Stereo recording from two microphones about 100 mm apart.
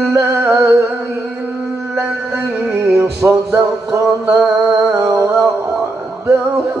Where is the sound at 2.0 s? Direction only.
20° right (ahead or behind).